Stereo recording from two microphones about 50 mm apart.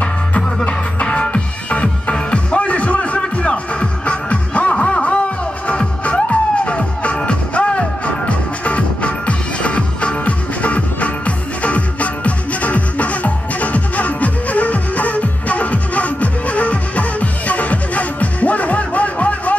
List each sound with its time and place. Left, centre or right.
0.7 s music: left